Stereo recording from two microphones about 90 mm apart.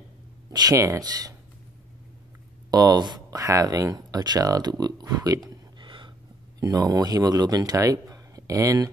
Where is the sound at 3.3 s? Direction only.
40° right (ahead or behind).